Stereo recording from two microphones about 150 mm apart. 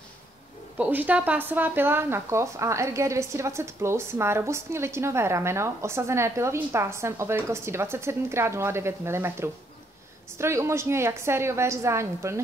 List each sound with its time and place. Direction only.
0.7 s speech: 10° right (ahead or behind)